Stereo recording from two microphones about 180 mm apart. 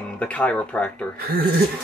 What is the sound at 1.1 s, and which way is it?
Speech, 55° right (ahead or behind).